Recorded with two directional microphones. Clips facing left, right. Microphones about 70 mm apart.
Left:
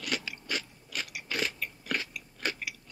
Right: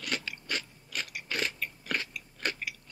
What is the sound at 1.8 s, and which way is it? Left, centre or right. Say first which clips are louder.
Chewing: left 1 dB; right.